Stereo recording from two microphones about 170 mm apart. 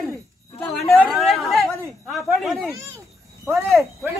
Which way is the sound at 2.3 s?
Centre (ahead or behind).